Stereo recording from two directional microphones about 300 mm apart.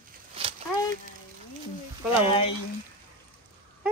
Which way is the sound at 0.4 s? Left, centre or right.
Centre.